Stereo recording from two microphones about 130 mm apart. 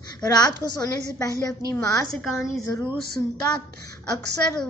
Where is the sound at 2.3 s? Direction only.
Centre (ahead or behind).